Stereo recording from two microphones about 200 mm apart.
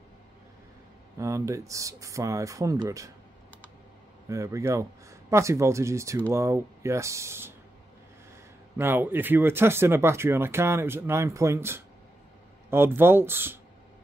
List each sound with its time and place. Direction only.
1.1 s speech: 15° right (ahead or behind)
4.3 s speech: 15° right (ahead or behind)
8.7 s speech: 10° right (ahead or behind)